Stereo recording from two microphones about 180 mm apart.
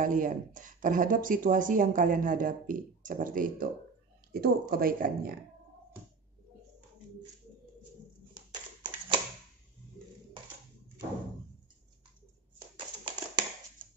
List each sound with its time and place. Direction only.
0.0 s speech: 45° right (ahead or behind)
8.4 s hands: 25° right (ahead or behind)
12.7 s a sound: 25° right (ahead or behind)